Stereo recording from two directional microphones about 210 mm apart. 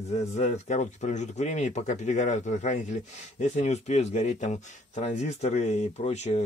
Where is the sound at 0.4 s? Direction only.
35° left (ahead or behind).